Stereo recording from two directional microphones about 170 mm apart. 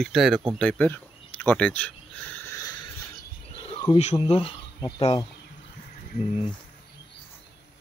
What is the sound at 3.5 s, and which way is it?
Insect, 30° left (ahead or behind).